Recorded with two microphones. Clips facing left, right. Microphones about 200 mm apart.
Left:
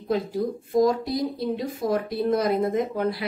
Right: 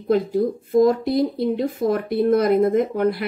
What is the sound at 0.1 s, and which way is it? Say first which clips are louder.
Speech: right 6 dB; 55° right (ahead or behind).